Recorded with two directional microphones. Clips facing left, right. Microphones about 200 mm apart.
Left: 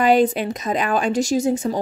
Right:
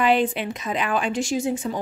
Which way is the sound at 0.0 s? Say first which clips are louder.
Left 4 dB; 40° left (ahead or behind).